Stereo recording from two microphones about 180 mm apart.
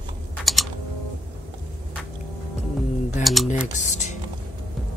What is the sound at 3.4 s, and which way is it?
Typing, 40° left (ahead or behind).